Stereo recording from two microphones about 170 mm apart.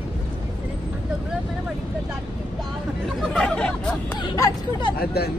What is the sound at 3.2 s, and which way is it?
Hubbub, 5° left (ahead or behind).